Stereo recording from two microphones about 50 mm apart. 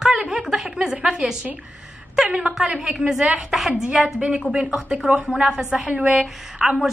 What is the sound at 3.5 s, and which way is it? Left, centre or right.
Speech, centre.